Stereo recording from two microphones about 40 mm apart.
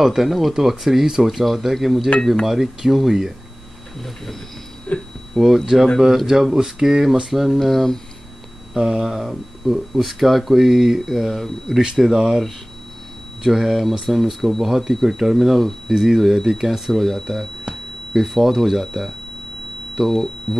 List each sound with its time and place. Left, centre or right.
0.0 s speech: centre
4.9 s speech: left
5.4 s speech: centre
8.7 s speech: centre
12.0 s speech: centre
20.5 s a sound: centre